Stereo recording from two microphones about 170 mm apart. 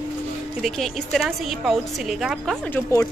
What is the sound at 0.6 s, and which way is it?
Speech, centre (ahead or behind).